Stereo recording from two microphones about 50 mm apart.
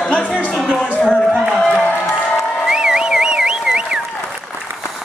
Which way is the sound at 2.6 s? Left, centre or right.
Centre.